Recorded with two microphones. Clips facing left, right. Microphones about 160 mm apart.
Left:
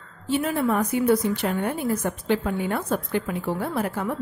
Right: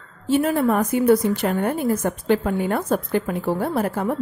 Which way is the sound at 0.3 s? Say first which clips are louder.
Right 4 dB; 45° right (ahead or behind).